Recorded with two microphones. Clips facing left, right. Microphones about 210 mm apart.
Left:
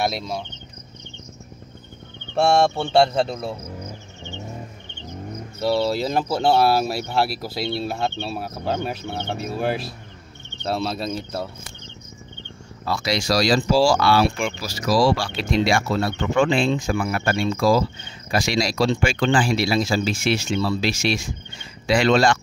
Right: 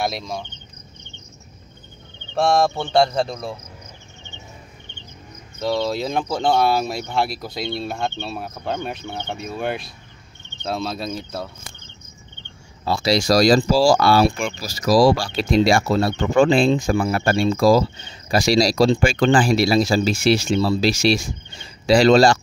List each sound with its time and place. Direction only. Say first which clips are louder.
0.0 s speech: left 1 dB; 5° left (ahead or behind)
2.3 s speech: even; 5° left (ahead or behind)
5.6 s speech: left 1 dB; 5° left (ahead or behind)
12.8 s speech: right 4 dB; 30° right (ahead or behind)